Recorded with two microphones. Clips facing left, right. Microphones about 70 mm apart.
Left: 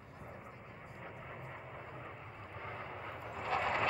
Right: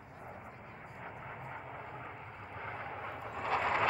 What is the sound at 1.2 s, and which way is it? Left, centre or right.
Vehicle, right.